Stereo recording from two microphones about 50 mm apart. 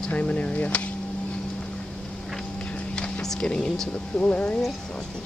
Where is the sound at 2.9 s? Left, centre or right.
Centre.